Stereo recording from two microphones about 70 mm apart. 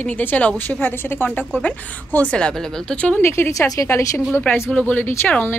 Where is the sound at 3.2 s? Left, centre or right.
Left.